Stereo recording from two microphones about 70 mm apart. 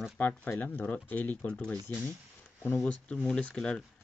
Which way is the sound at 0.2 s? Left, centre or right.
Left.